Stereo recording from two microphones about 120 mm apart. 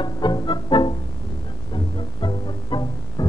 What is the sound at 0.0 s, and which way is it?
Music, 40° left (ahead or behind).